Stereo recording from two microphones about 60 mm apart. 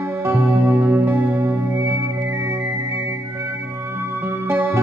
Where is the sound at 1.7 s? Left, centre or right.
Right.